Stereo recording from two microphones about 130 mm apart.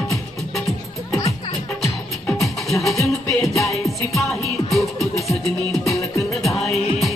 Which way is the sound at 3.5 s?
25° left (ahead or behind).